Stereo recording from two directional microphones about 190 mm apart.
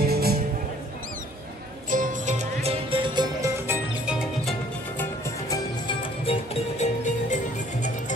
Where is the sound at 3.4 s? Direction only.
10° right (ahead or behind).